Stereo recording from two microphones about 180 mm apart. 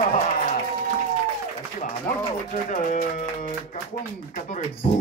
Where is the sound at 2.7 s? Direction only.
45° left (ahead or behind).